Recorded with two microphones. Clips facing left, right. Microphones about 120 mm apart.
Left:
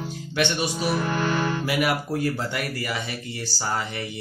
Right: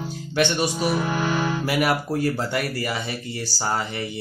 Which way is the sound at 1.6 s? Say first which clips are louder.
Right 2 dB; 40° right (ahead or behind).